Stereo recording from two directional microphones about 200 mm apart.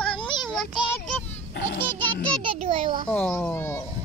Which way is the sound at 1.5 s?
55° left (ahead or behind).